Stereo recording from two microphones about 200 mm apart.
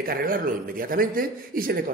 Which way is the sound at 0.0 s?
45° right (ahead or behind).